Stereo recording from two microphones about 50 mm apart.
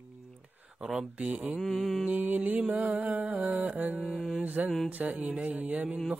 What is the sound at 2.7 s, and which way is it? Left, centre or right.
Mantra, right.